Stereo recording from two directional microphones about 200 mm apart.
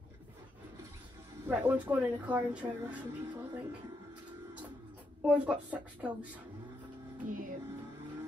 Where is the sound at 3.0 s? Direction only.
20° right (ahead or behind).